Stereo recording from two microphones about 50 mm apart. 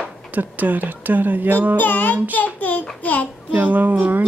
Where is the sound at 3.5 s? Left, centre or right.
Right.